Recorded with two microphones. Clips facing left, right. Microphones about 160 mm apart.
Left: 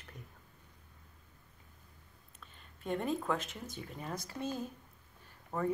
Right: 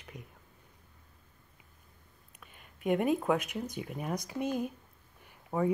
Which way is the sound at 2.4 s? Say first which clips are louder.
Right 9 dB; 10° right (ahead or behind).